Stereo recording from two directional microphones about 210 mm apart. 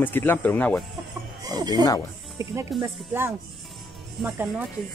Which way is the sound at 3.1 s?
10° right (ahead or behind).